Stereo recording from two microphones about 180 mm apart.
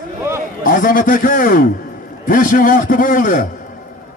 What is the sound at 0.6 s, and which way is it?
A man's voice, 50° left (ahead or behind).